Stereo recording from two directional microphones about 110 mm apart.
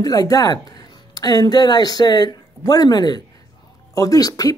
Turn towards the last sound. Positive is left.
turn(degrees=35)  # may be behind; listen again after turning